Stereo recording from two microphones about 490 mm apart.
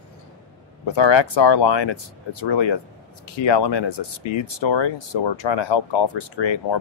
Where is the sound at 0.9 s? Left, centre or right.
Left.